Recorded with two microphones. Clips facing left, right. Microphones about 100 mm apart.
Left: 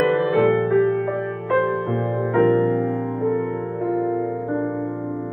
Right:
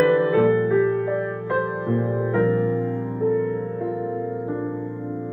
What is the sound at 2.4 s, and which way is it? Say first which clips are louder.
Music: left 5 dB; 60° left (ahead or behind).